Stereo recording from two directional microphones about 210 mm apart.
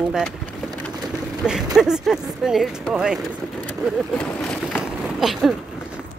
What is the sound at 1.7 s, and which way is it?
Speech, centre (ahead or behind).